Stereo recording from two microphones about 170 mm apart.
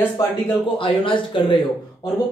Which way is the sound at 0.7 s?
30° left (ahead or behind).